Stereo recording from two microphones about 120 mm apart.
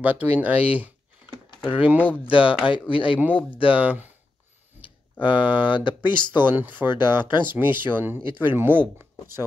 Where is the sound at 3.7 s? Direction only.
15° right (ahead or behind).